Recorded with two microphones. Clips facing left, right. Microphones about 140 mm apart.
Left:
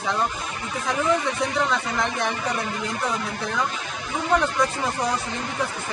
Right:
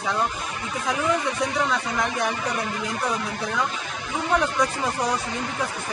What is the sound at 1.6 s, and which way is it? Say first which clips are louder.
Speech: left 1 dB; 10° right (ahead or behind).